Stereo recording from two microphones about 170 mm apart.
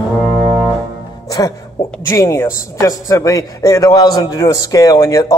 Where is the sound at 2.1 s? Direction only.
15° left (ahead or behind).